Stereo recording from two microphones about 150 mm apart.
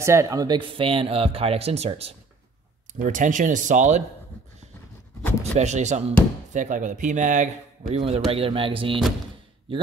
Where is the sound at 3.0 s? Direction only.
60° right (ahead or behind).